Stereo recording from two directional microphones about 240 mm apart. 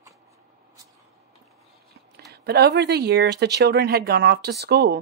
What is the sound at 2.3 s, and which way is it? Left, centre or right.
Speech, right.